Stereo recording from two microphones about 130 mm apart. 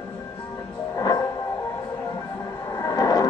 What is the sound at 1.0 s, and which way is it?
Music, 25° left (ahead or behind).